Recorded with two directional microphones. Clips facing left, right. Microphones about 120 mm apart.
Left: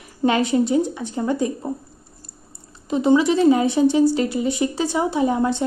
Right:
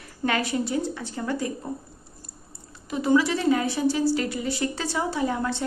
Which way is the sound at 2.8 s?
25° left (ahead or behind).